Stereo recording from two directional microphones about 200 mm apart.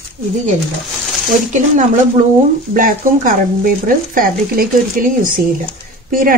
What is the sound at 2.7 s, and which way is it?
Speech, 45° right (ahead or behind).